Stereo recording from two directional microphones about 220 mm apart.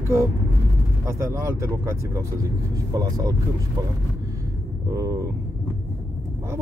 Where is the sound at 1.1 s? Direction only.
15° right (ahead or behind).